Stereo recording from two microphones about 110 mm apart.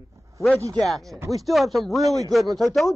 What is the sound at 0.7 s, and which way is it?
A man's voice, centre (ahead or behind).